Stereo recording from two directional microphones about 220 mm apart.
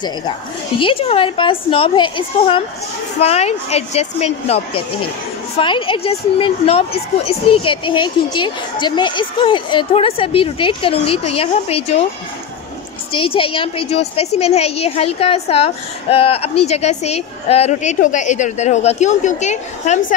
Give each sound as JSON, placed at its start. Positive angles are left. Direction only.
{"t": 0.7, "sound": "a woman's voice", "side_deg": 25}
{"t": 13.1, "sound": "a woman's voice", "side_deg": 25}